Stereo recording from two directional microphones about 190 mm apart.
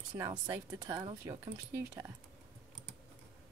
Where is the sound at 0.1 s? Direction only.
25° right (ahead or behind).